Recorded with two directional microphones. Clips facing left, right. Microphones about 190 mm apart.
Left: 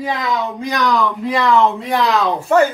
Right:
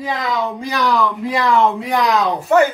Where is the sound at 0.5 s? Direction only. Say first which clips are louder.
Left 1 dB; 5° right (ahead or behind).